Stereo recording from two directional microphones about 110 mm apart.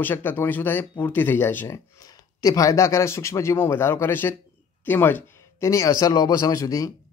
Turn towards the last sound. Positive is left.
turn(degrees=30)  # may be behind; listen again after turning